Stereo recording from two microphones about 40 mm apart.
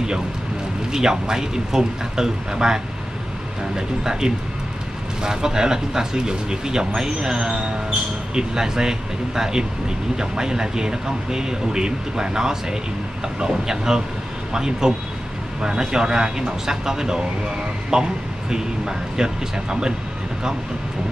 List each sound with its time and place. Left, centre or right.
0.9 s speech: centre